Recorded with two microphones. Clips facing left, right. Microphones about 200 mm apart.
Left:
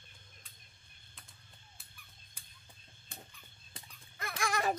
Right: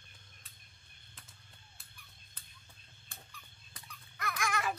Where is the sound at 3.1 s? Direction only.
20° left (ahead or behind).